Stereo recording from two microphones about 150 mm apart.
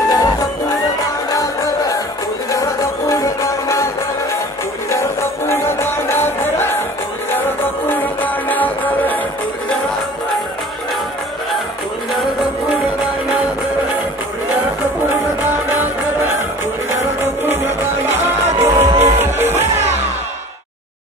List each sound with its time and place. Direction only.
0.1 s music: 25° left (ahead or behind)
7.9 s music: 10° left (ahead or behind)
15.7 s music: 15° right (ahead or behind)
18.2 s music: 15° right (ahead or behind)